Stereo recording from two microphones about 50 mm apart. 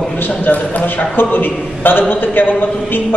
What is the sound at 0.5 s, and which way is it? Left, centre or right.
A man's voice, left.